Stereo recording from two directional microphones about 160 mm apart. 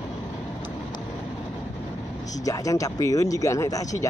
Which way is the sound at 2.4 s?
20° left (ahead or behind).